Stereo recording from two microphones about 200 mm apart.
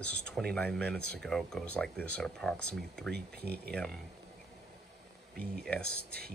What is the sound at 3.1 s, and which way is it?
Speech, 55° right (ahead or behind).